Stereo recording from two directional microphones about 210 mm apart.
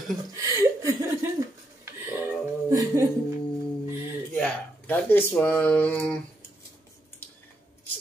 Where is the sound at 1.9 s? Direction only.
10° right (ahead or behind).